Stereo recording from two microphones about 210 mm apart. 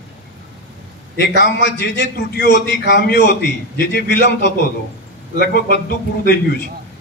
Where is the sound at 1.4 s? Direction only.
60° left (ahead or behind).